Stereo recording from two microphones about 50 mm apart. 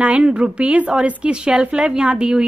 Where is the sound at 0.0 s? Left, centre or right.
Right.